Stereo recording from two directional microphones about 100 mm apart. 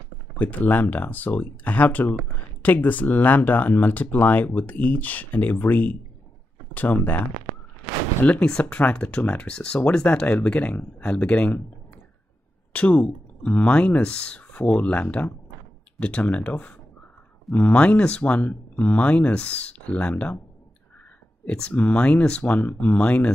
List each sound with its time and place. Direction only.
0.4 s speech: 15° left (ahead or behind)
8.2 s speech: 15° left (ahead or behind)
12.7 s speech: 15° left (ahead or behind)
21.5 s speech: 15° left (ahead or behind)